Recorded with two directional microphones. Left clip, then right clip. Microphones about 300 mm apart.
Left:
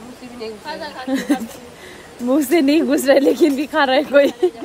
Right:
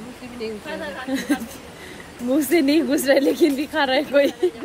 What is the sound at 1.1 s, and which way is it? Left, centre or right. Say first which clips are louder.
Speech: left 5 dB; left.